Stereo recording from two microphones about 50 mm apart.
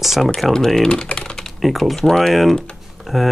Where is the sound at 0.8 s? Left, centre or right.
Centre.